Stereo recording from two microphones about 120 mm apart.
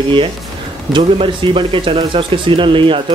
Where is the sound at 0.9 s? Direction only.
45° right (ahead or behind).